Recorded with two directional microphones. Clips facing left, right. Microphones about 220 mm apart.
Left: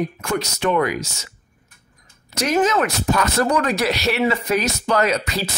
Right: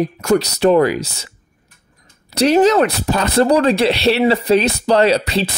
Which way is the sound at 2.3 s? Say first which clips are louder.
Right 7 dB; 35° right (ahead or behind).